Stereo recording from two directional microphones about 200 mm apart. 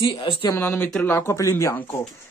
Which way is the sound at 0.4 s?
15° left (ahead or behind).